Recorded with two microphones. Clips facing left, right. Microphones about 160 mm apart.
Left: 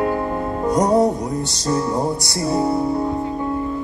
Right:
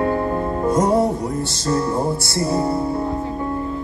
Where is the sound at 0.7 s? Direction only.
Centre (ahead or behind).